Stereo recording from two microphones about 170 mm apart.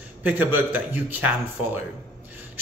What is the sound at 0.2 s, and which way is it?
A man's voice, 10° right (ahead or behind).